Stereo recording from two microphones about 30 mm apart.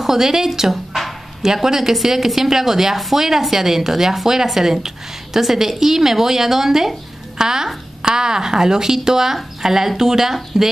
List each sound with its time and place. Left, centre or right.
0.0 s a woman's voice: centre